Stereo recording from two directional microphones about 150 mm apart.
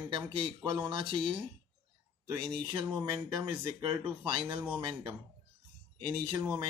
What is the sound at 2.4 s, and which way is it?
Speech, 35° right (ahead or behind).